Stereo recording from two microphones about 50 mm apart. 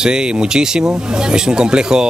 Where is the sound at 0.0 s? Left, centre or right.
Centre.